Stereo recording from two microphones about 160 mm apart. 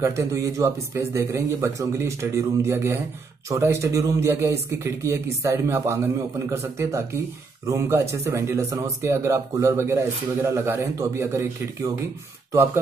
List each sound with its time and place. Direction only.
0.0 s speech: 20° right (ahead or behind)